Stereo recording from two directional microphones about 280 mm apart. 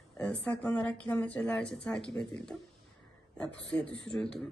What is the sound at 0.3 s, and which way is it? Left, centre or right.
Speech, centre.